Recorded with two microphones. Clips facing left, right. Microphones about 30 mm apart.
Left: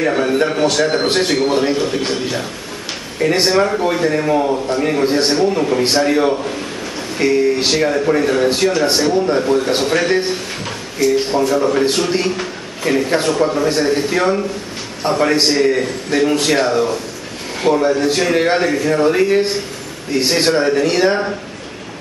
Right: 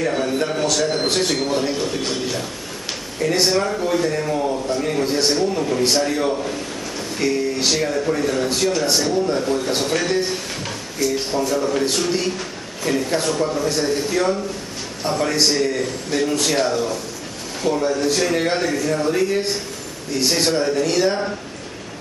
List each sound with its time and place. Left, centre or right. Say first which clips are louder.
0.0 s a man's voice: left 5 dB; left